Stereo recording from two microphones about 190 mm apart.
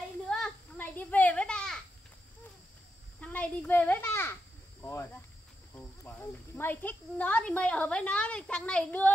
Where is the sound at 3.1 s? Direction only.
5° left (ahead or behind).